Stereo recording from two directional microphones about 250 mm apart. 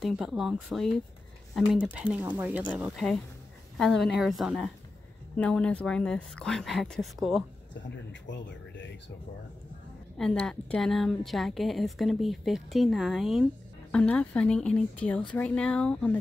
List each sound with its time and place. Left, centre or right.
0.0 s a woman's voice: centre
8.1 s speech: left
10.1 s a woman's voice: centre